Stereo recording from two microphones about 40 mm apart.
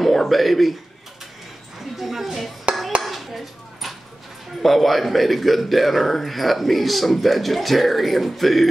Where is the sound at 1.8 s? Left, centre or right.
Centre.